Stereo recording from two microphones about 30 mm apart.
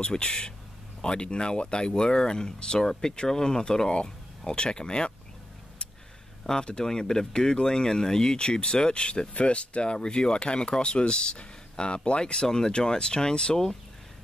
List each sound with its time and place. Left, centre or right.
0.0 s speech: left
3.9 s speech: left
6.5 s speech: centre
9.3 s speech: left